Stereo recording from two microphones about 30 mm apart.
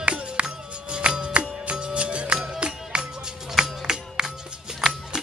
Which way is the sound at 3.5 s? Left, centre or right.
Right.